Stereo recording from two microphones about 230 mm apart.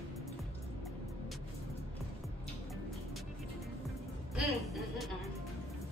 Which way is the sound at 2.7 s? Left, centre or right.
Centre.